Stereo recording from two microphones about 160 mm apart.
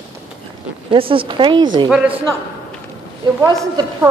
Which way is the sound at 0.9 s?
35° right (ahead or behind).